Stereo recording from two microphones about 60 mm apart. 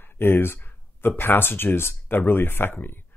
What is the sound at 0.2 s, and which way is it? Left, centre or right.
Speech, left.